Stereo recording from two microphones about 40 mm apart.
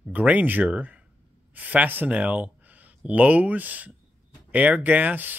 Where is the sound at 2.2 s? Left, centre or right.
Right.